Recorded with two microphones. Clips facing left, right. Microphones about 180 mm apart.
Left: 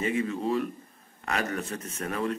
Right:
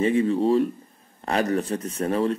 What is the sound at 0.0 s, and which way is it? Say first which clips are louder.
Speech: right 8 dB; 30° right (ahead or behind).